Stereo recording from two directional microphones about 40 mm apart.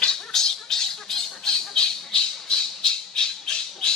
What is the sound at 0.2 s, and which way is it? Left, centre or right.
Squawk, centre.